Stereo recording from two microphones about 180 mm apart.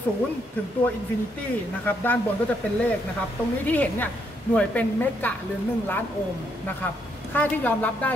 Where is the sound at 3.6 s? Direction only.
10° left (ahead or behind).